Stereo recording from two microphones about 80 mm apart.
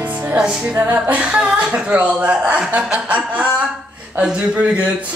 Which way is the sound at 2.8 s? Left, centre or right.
Centre.